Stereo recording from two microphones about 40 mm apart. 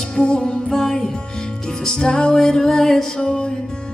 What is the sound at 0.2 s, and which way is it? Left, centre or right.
Music, left.